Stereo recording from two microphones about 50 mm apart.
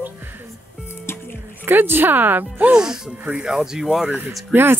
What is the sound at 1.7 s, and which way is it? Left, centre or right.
Speech, right.